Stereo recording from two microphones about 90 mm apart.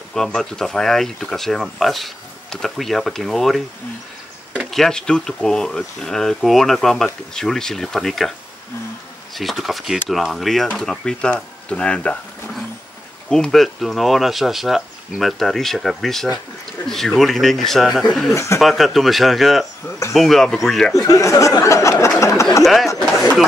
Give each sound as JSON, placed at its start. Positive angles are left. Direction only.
{"t": 0.1, "sound": "speech", "side_deg": 5}
{"t": 9.3, "sound": "speech", "side_deg": 0}
{"t": 13.3, "sound": "speech", "side_deg": 5}
{"t": 18.3, "sound": "speech", "side_deg": 30}
{"t": 18.6, "sound": "speech", "side_deg": 0}
{"t": 20.9, "sound": "speech", "side_deg": 35}
{"t": 22.2, "sound": "chatter", "side_deg": 35}